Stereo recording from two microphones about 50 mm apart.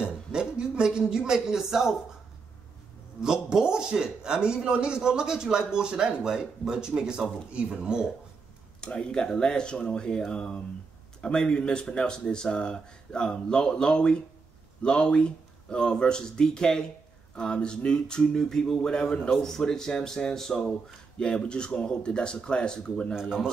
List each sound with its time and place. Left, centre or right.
0.0 s a sound: centre
3.2 s speech: centre
8.8 s speech: centre